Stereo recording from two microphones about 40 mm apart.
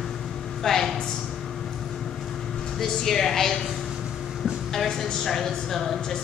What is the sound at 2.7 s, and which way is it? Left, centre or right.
Speech, centre.